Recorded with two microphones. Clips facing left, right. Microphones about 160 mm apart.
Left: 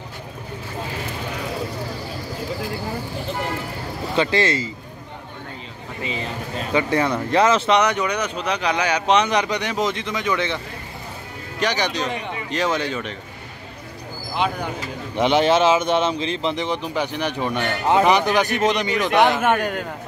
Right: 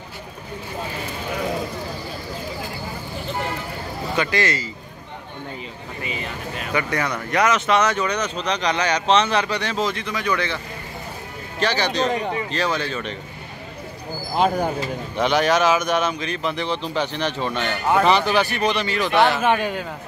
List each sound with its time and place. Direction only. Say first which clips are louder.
4.2 s speech: left 3 dB; 25° left (ahead or behind)
6.6 s speech: left 4 dB; 25° left (ahead or behind)
7.8 s speech: even; 15° left (ahead or behind)
11.6 s speech: right 2 dB; 15° left (ahead or behind)
12.1 s speech: right 5 dB; 40° right (ahead or behind)
12.4 s speech: left 1 dB; 20° left (ahead or behind)
14.3 s speech: right 4 dB; 40° right (ahead or behind)
15.1 s speech: left 2 dB; 20° left (ahead or behind)